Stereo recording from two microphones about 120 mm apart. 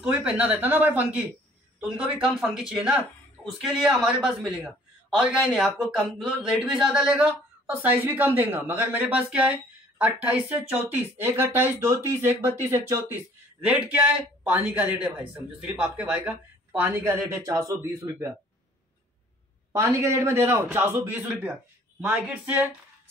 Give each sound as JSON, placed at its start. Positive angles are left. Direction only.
{"t": 0.0, "sound": "a man's voice", "side_deg": -10}
{"t": 19.7, "sound": "a man's voice", "side_deg": -25}